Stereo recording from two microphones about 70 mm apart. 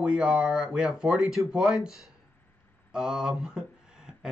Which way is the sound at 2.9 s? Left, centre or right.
Centre.